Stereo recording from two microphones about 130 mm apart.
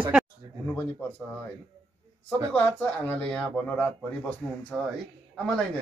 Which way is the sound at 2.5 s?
10° left (ahead or behind).